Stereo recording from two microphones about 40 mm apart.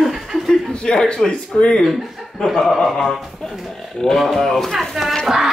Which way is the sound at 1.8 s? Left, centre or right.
Centre.